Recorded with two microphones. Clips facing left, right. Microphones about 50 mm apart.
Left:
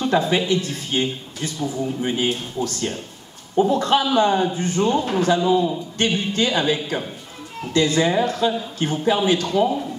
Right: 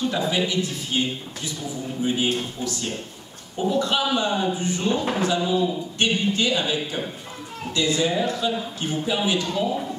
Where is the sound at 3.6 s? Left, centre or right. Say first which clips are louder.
Left 1 dB; left.